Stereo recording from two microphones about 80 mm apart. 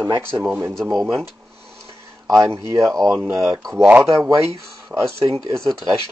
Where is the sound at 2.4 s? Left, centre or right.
Right.